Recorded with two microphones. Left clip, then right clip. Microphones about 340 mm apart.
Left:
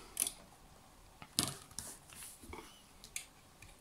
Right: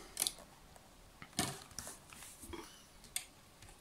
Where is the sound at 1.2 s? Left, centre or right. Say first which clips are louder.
Left 2 dB; centre.